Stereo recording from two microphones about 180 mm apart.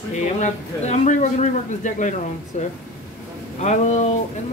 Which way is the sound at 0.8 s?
40° left (ahead or behind).